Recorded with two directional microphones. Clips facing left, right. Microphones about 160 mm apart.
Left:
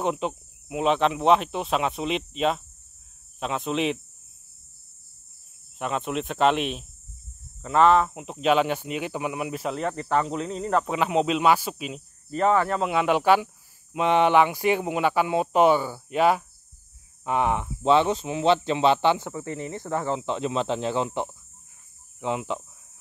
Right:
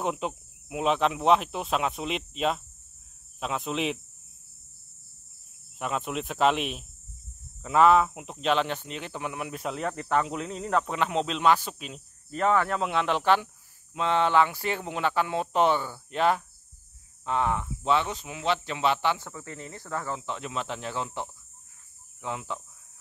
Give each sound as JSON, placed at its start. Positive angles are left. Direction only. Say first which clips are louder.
{"t": 0.0, "sound": "speech", "louder": "left 3 dB", "side_deg": -5}
{"t": 5.8, "sound": "speech", "louder": "left 3 dB", "side_deg": 0}